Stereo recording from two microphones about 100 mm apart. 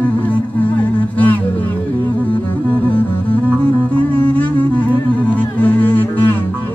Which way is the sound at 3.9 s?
15° left (ahead or behind).